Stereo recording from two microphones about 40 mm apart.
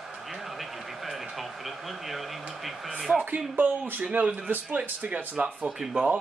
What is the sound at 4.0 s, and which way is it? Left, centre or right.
Speech, right.